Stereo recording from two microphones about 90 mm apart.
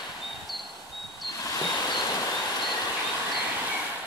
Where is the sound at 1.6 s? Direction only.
50° left (ahead or behind).